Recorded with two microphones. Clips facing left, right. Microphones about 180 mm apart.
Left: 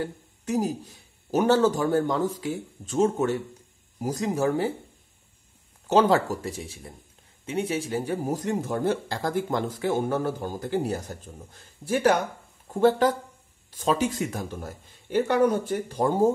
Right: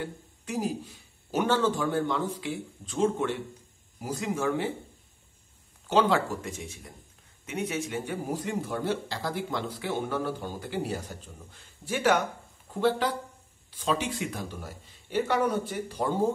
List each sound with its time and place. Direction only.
0.0 s speech: 40° left (ahead or behind)
5.9 s speech: 40° left (ahead or behind)